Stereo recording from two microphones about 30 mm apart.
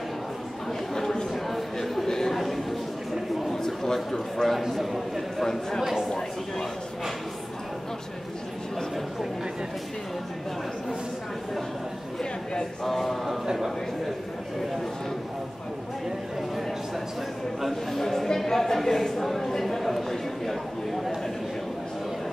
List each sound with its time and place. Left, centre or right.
1.3 s a sound: centre
2.0 s chatter: centre
2.3 s a sound: centre
3.5 s a man's voice: centre
4.6 s a man's voice: centre
5.4 s speech: centre
12.8 s a man's voice: centre
17.9 s speech: centre
19.8 s a sound: centre